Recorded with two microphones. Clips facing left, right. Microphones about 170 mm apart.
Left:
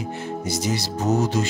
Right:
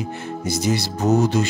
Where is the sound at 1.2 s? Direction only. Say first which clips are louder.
Right 3 dB; 65° right (ahead or behind).